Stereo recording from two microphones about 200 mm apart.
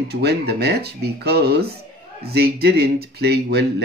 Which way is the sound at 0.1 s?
55° right (ahead or behind).